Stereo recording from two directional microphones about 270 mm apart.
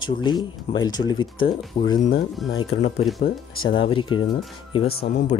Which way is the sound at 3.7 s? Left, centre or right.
Centre.